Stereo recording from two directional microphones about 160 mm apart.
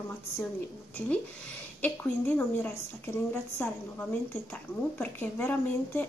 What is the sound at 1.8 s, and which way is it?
A woman's voice, 10° left (ahead or behind).